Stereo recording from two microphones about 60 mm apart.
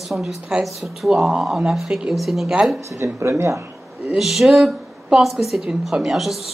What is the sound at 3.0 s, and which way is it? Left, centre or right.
Speech, right.